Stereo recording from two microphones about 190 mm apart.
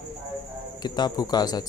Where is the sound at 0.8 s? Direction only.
20° left (ahead or behind).